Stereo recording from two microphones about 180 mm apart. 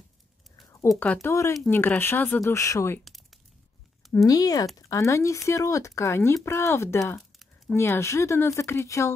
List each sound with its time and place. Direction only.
0.8 s speech: 5° left (ahead or behind)
4.3 s speech: 20° left (ahead or behind)
7.2 s a sound: centre (ahead or behind)
7.7 s speech: 15° left (ahead or behind)